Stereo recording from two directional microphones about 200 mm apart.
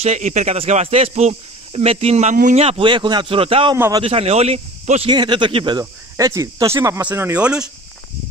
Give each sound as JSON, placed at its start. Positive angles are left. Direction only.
{"t": 0.0, "sound": "speech", "side_deg": -35}
{"t": 3.7, "sound": "speech", "side_deg": -10}
{"t": 4.0, "sound": "speech", "side_deg": -30}